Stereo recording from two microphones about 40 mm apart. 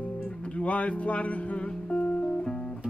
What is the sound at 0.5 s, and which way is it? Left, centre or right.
Music, left.